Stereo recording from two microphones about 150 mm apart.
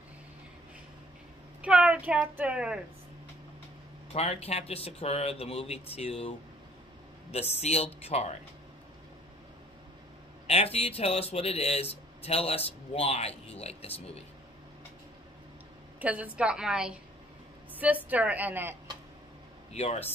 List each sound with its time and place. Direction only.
1.6 s a woman's voice: 5° right (ahead or behind)
4.1 s speech: 45° left (ahead or behind)
10.4 s speech: 45° left (ahead or behind)
16.0 s a woman's voice: 10° right (ahead or behind)
19.7 s speech: 45° left (ahead or behind)